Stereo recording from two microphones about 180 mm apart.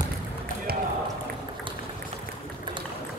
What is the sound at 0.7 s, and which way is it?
Basketball bounce, 55° right (ahead or behind).